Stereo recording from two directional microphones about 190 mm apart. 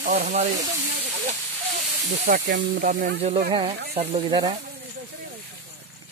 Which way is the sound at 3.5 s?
25° right (ahead or behind).